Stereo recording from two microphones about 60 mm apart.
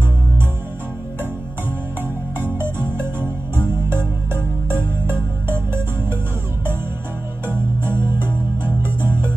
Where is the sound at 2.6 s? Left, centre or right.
Right.